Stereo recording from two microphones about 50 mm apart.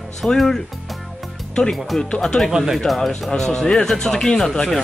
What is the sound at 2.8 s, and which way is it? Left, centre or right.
Speech, centre.